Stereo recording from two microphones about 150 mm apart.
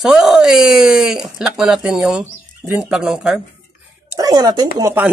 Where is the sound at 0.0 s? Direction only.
Centre (ahead or behind).